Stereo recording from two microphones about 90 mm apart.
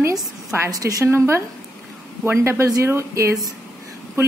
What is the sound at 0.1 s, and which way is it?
A woman's voice, 45° right (ahead or behind).